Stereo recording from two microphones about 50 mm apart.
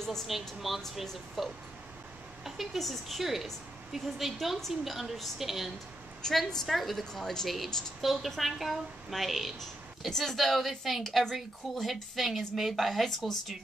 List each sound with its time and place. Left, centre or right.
0.3 s a woman's voice: centre